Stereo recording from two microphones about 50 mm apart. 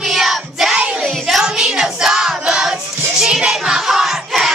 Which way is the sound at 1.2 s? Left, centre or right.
Centre.